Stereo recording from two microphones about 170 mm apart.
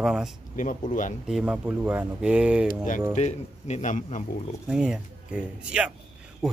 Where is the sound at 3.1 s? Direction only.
40° left (ahead or behind).